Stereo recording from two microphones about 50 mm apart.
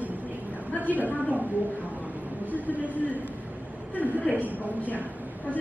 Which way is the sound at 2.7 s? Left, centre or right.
Right.